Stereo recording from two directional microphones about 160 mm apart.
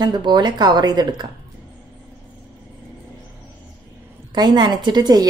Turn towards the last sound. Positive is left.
turn(degrees=-25)  # may be behind; listen again after turning